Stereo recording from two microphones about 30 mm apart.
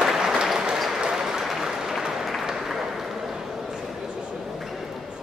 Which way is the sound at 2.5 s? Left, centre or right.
Centre.